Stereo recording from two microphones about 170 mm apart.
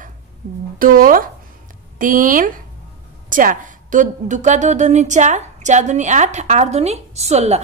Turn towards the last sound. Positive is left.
turn(degrees=-40)  # may be behind; listen again after turning